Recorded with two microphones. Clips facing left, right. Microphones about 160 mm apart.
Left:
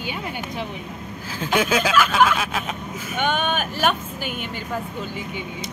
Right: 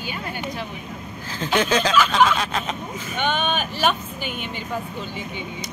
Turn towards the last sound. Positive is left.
turn(degrees=10)  # may be behind; listen again after turning